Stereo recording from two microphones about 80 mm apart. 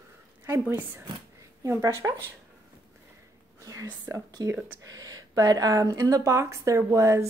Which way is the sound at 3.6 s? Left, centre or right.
Right.